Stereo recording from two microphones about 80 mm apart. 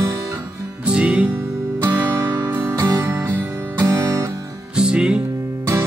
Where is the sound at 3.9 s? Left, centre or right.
Right.